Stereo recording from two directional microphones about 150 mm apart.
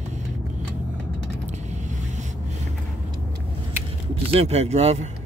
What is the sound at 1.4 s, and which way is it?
Vehicle, 50° right (ahead or behind).